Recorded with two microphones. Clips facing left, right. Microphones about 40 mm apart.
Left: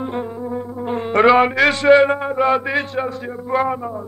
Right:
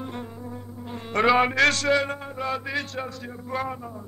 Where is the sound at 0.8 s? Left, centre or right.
Left.